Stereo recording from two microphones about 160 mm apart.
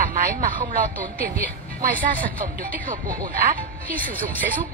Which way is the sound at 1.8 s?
60° right (ahead or behind).